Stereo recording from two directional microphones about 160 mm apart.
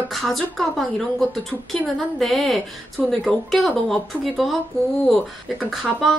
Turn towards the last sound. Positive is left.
turn(degrees=0)  # may be behind; listen again after turning